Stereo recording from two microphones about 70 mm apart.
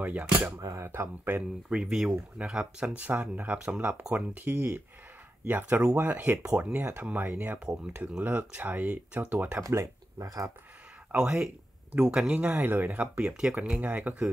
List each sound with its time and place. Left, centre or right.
0.0 s speech: right
0.6 s speech: right
1.7 s speech: centre
4.1 s speech: right
9.6 s speech: right
11.1 s speech: centre